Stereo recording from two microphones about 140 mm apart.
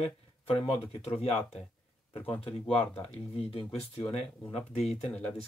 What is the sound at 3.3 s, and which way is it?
Speech, 45° left (ahead or behind).